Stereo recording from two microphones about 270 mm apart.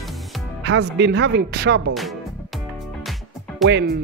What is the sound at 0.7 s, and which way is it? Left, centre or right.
Speech, right.